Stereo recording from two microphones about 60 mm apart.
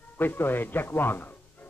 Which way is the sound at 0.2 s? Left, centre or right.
Left.